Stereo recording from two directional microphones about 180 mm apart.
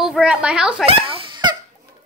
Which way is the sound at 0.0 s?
5° right (ahead or behind).